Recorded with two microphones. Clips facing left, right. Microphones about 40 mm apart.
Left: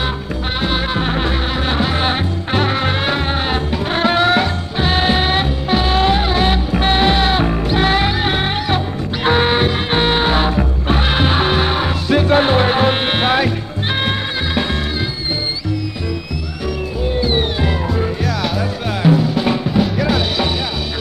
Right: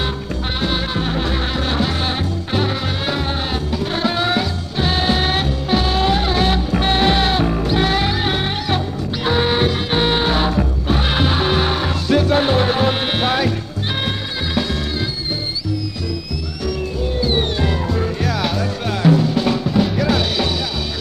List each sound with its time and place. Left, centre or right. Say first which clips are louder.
0.6 s music: left 3 dB; left
2.5 s music: left 4 dB; left
4.7 s music: left 2 dB; left
7.3 s music: left 1 dB; left
9.2 s music: left 3 dB; left
9.6 s music: left 2 dB; left
17.2 s music: left 1 dB; centre
18.2 s music: even; centre
18.6 s music: left 1 dB; centre